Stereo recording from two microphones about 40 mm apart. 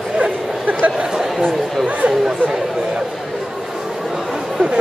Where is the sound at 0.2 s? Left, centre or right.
Right.